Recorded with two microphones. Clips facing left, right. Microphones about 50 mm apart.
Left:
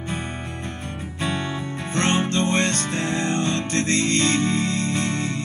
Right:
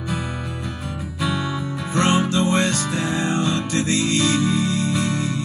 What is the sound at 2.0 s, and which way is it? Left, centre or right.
Music, left.